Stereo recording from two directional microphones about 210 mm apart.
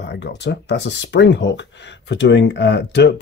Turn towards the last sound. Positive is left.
turn(degrees=55)  # may be behind; listen again after turning